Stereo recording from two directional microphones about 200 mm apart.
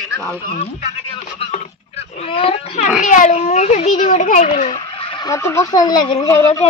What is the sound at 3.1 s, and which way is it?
A child's voice, 40° left (ahead or behind).